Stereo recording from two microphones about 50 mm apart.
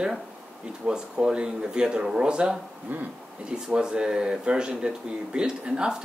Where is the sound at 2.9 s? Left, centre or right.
Right.